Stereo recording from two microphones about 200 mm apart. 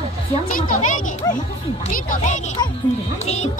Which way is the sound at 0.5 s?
40° left (ahead or behind).